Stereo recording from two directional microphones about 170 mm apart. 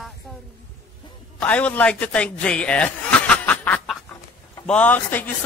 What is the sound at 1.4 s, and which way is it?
A man's voice, 10° left (ahead or behind).